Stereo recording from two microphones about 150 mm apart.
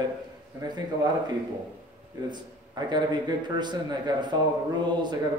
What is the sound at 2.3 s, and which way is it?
A man's voice, 30° right (ahead or behind).